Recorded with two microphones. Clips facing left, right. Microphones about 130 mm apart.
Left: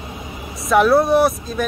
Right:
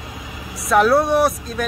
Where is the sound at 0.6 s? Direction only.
Centre (ahead or behind).